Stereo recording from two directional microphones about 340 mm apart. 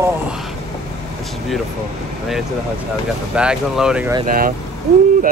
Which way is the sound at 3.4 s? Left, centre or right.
Centre.